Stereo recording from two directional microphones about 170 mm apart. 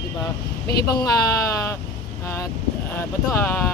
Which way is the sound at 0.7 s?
20° left (ahead or behind).